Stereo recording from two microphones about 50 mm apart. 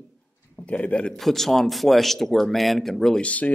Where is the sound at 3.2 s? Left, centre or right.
Left.